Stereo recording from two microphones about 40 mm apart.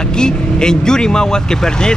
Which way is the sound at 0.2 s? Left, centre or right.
Centre.